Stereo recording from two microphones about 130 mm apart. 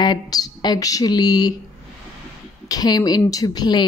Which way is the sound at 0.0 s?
30° left (ahead or behind).